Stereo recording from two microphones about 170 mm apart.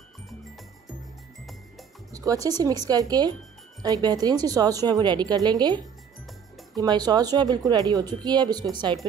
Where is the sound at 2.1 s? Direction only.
20° right (ahead or behind).